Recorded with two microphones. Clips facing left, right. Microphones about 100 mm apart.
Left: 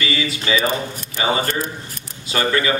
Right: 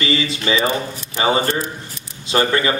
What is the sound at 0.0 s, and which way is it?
A man's voice, 35° right (ahead or behind).